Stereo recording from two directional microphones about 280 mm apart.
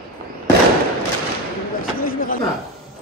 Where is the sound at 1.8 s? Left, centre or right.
Left.